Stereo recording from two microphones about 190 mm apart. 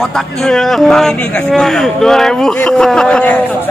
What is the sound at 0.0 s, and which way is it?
Speech, centre (ahead or behind).